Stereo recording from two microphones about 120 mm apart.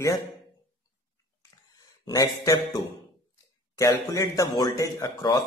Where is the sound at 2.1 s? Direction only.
30° left (ahead or behind).